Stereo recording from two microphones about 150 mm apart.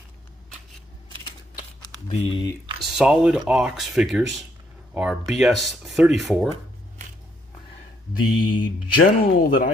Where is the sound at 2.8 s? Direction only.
5° right (ahead or behind).